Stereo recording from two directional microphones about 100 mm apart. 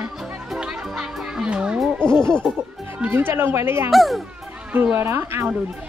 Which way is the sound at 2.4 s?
Centre (ahead or behind).